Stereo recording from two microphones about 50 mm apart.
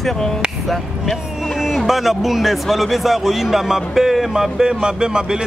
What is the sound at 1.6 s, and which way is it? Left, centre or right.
A man's voice, centre.